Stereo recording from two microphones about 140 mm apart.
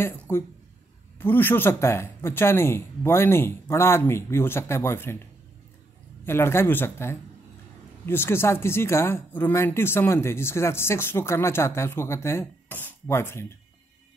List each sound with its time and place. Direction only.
0.3 s speech: 20° left (ahead or behind)
6.2 s speech: 15° left (ahead or behind)